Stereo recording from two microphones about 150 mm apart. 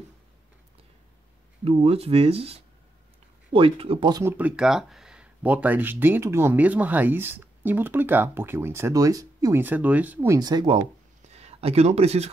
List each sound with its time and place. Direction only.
1.6 s speech: 40° right (ahead or behind)
4.1 s speech: 15° right (ahead or behind)
11.3 s speech: 45° right (ahead or behind)